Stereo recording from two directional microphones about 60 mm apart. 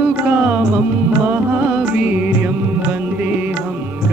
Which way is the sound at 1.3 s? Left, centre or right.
Right.